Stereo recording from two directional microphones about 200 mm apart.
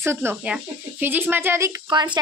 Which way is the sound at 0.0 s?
10° right (ahead or behind).